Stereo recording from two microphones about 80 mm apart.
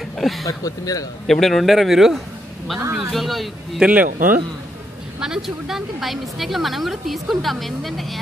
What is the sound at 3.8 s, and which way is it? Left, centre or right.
Speech, right.